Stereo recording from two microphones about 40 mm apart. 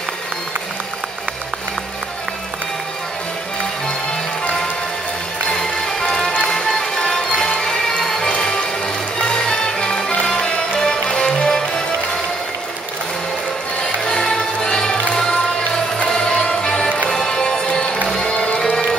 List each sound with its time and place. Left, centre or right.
5.5 s music: centre
14.2 s music: centre
18.0 s music: centre
18.3 s music: left